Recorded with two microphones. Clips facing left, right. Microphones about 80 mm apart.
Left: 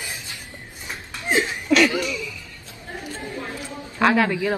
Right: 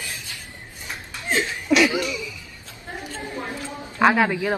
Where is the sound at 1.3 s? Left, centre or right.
Centre.